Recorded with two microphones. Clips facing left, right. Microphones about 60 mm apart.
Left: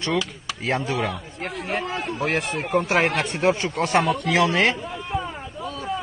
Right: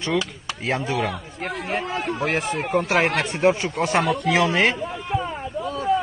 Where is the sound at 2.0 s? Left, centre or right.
Right.